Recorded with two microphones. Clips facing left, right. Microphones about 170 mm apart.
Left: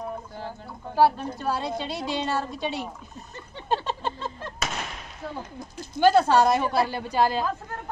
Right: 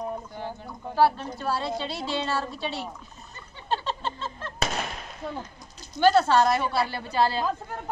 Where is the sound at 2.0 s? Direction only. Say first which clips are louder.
Left 3 dB; 15° left (ahead or behind).